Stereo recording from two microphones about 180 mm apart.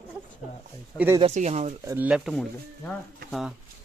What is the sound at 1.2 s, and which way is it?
Speech, 40° right (ahead or behind).